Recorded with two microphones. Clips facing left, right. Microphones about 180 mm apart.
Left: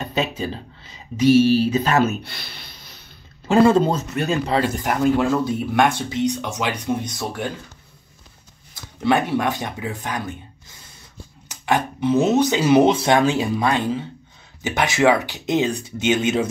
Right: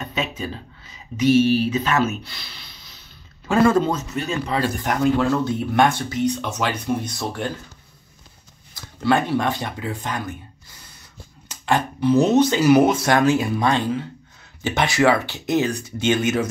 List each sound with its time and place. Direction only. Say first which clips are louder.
0.0 s speech: left 3 dB; 30° left (ahead or behind)
2.2 s a sound: left 3 dB; 60° left (ahead or behind)
3.4 s speech: left 2 dB; 25° left (ahead or behind)
4.8 s speech: right 1 dB; 5° left (ahead or behind)
9.0 s speech: even; 15° left (ahead or behind)
11.6 s speech: right 1 dB; 15° left (ahead or behind)